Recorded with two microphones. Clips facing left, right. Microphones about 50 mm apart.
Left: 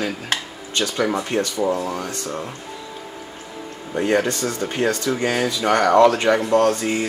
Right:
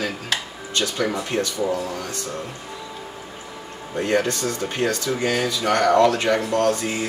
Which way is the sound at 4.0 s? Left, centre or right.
Centre.